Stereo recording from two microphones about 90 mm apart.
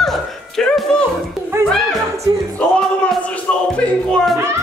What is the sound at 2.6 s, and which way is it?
Speech, 10° left (ahead or behind).